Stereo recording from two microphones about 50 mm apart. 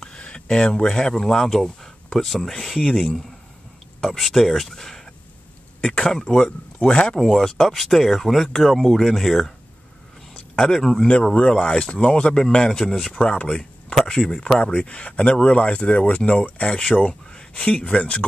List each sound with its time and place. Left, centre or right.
0.0 s speech: centre
6.9 s speech: left
7.2 s speech: centre
10.6 s speech: centre
11.3 s speech: left